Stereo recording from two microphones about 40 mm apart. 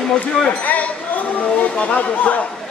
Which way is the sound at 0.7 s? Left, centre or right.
Left.